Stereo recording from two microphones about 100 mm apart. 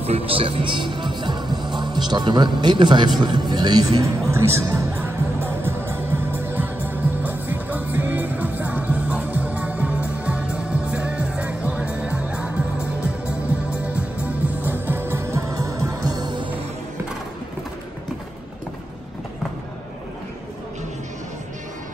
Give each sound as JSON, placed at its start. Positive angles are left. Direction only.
{"t": 0.0, "sound": "speech", "side_deg": -80}
{"t": 4.3, "sound": "music", "side_deg": -25}